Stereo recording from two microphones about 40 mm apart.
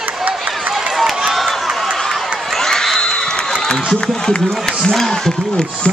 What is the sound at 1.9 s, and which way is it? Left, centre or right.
Run, centre.